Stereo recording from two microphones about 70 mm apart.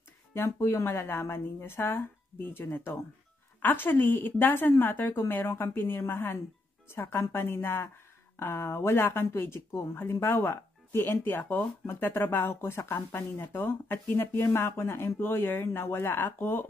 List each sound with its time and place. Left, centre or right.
0.3 s a woman's voice: left